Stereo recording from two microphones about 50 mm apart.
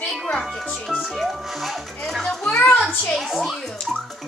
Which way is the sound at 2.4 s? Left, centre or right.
Left.